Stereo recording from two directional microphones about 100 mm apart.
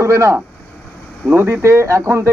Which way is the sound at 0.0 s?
30° right (ahead or behind).